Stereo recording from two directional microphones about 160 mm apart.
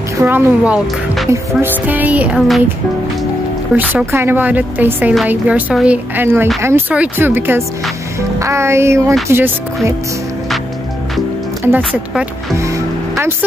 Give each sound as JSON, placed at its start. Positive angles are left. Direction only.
{"t": 0.2, "sound": "a woman's voice", "side_deg": -15}
{"t": 3.7, "sound": "a woman's voice", "side_deg": -15}
{"t": 11.6, "sound": "a woman's voice", "side_deg": -10}
{"t": 12.5, "sound": "music", "side_deg": -20}